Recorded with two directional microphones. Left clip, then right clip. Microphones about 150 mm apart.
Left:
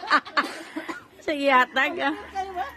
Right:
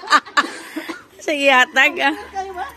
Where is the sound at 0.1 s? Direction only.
Centre (ahead or behind).